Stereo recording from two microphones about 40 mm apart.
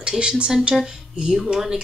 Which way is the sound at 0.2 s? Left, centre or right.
Right.